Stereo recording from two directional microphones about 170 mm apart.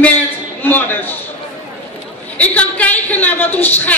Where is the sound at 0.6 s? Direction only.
10° left (ahead or behind).